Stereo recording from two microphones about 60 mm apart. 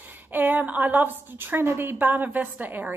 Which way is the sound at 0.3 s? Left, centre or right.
Right.